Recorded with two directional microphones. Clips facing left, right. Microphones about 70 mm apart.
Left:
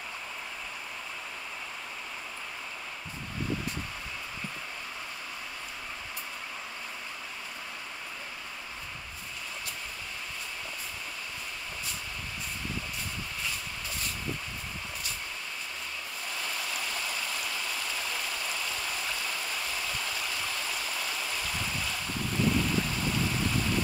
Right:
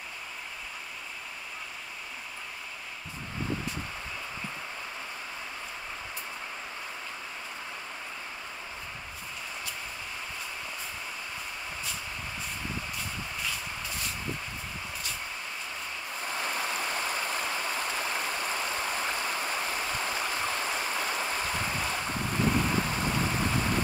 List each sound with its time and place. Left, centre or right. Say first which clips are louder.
16.2 s stream: right 5 dB; right